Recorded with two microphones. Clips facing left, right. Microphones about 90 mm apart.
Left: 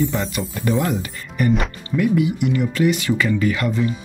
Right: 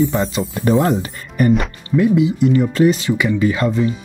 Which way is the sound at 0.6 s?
35° right (ahead or behind).